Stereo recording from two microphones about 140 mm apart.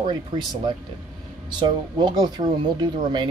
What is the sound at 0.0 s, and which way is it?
Speech, 30° right (ahead or behind).